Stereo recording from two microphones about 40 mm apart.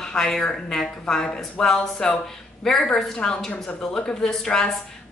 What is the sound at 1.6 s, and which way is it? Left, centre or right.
A woman's voice, centre.